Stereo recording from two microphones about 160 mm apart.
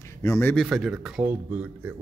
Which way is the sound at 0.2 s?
15° left (ahead or behind).